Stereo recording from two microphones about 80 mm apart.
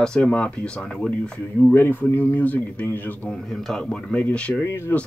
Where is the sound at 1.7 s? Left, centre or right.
Left.